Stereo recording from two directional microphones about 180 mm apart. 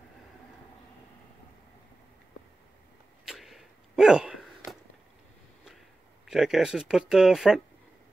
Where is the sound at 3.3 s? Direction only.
Centre (ahead or behind).